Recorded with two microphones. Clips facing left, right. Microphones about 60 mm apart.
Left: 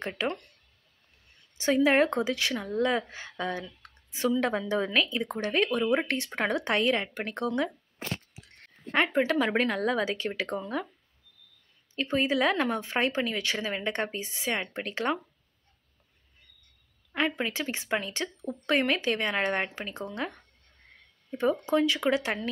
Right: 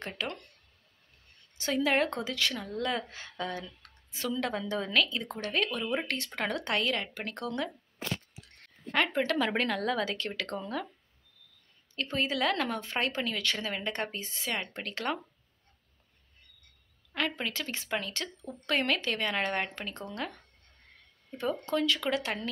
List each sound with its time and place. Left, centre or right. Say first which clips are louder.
1.6 s a woman's voice: left 5 dB; left
8.9 s speech: left 3 dB; centre
11.9 s speech: left 5 dB; centre
17.1 s speech: left 4 dB; centre
21.3 s speech: left 5 dB; centre